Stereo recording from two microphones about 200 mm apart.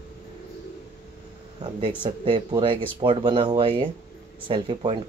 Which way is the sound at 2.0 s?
25° right (ahead or behind).